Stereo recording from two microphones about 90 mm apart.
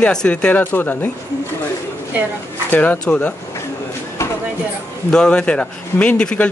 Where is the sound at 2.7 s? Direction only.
15° left (ahead or behind).